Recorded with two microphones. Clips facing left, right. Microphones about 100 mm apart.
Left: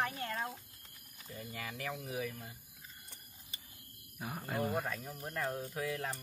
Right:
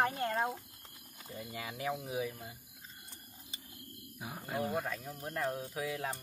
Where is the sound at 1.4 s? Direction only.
15° right (ahead or behind).